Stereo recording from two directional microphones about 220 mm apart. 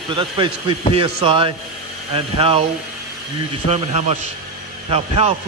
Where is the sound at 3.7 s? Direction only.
30° right (ahead or behind).